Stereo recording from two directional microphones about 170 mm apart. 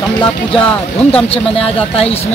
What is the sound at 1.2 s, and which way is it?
Speech, 35° left (ahead or behind).